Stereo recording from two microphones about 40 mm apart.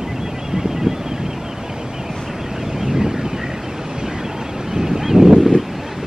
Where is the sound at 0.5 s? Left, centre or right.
Centre.